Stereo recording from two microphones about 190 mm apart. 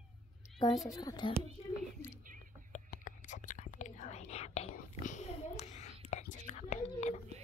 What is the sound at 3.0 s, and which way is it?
Whispering, 40° left (ahead or behind).